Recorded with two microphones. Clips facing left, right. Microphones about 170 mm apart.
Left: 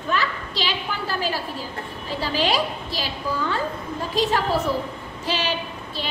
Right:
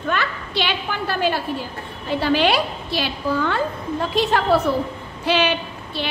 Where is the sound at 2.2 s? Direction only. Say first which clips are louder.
Right 4 dB; 65° right (ahead or behind).